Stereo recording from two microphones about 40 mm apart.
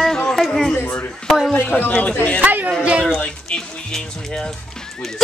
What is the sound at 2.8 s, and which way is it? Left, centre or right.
Speech, right.